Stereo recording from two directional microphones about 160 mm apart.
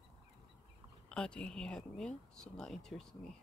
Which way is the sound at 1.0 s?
5° left (ahead or behind).